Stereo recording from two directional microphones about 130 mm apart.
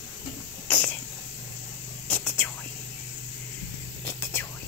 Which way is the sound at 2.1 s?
15° left (ahead or behind).